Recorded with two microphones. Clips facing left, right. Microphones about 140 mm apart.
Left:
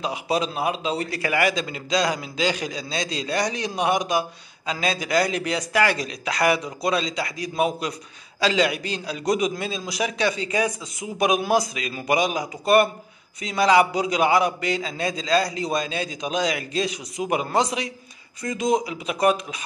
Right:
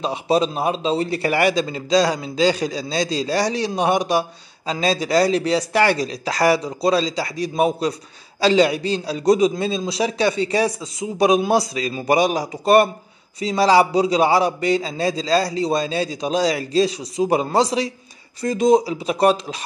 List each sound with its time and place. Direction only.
0.0 s a man's voice: 25° right (ahead or behind)